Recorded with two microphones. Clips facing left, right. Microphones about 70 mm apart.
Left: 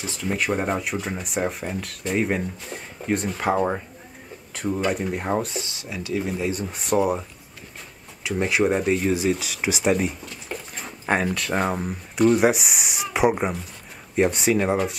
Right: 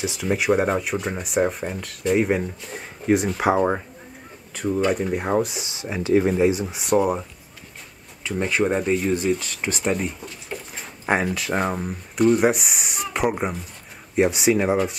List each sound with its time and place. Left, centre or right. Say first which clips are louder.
0.0 s speech: right 3 dB; centre
4.6 s speech: right 3 dB; centre; by 6.4 s right
6.5 s speech: right 2 dB; centre